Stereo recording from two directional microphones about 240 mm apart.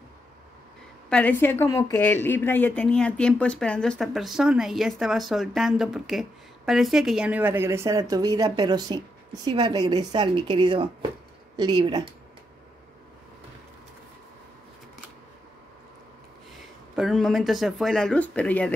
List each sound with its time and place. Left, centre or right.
1.1 s a woman's voice: centre
16.5 s speech: centre